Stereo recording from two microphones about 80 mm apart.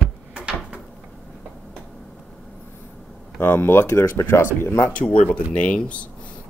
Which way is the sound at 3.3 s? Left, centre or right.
Left.